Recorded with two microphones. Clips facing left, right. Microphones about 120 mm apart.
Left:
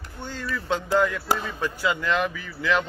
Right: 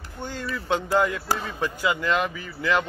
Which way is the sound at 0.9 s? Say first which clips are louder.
Left 2 dB; 15° right (ahead or behind).